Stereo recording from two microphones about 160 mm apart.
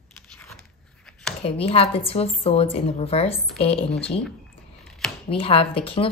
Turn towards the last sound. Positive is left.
turn(degrees=35)  # may be behind; listen again after turning